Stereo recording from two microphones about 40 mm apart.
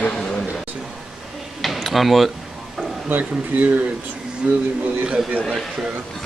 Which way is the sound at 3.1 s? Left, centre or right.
Right.